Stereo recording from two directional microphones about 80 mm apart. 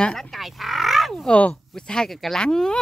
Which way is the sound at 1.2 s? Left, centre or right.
Centre.